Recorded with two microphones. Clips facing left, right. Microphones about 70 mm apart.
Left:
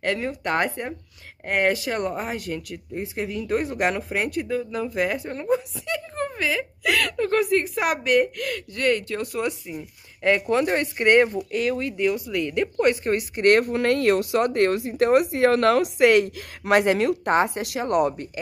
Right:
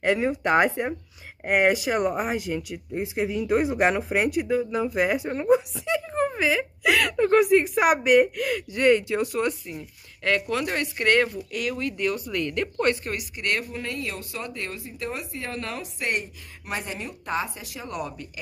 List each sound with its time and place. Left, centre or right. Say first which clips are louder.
0.0 s speech: right 3 dB; centre
9.3 s speech: right 1 dB; centre
10.5 s speech: left 5 dB; left
12.0 s speech: left 3 dB; centre
13.1 s speech: left 10 dB; left
17.3 s speech: left 8 dB; left